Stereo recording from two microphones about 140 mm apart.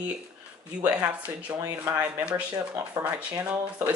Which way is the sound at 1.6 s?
20° right (ahead or behind).